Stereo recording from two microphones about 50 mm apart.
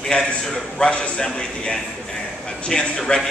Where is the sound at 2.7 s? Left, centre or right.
Centre.